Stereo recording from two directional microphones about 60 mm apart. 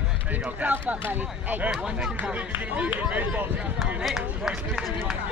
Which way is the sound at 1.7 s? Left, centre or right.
Centre.